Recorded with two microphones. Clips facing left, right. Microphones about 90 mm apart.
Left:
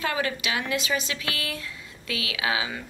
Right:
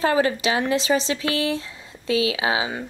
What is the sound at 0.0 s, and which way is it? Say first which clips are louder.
A woman's voice: right 8 dB; 30° right (ahead or behind).